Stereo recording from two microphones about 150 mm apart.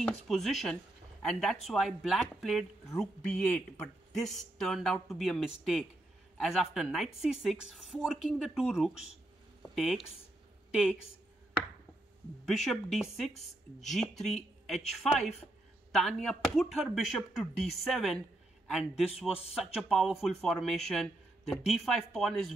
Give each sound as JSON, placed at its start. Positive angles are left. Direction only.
{"t": 0.0, "sound": "a woman's voice", "side_deg": 0}
{"t": 12.4, "sound": "speech", "side_deg": 0}
{"t": 13.3, "sound": "a woman's voice", "side_deg": 45}
{"t": 13.8, "sound": "speech", "side_deg": 0}
{"t": 15.9, "sound": "speech", "side_deg": 0}